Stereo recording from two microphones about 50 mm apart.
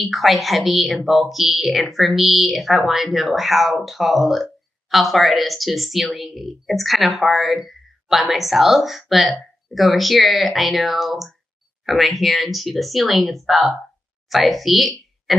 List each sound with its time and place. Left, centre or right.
0.0 s a woman's voice: centre